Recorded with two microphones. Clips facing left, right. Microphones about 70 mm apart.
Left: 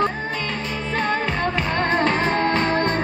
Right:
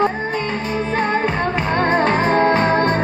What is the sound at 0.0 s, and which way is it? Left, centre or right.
Music, right.